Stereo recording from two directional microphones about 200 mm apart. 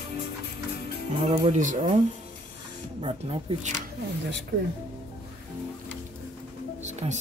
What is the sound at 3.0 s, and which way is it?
Speech, 30° right (ahead or behind).